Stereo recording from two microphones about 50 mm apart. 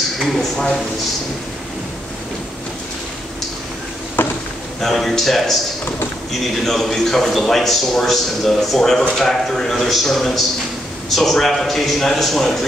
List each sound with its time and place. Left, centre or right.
0.2 s a man's voice: centre
4.2 s a sound: left
4.7 s a man's voice: centre
6.6 s a man's voice: centre